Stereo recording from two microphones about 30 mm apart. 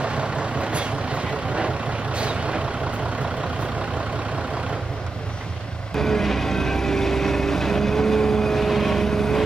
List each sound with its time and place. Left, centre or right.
0.0 s vehicle: right
5.9 s vehicle: centre